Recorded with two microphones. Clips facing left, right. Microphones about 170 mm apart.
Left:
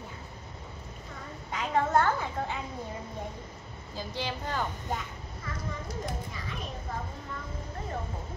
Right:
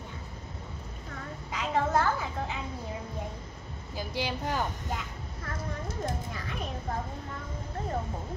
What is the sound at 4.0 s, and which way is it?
Speech, 10° right (ahead or behind).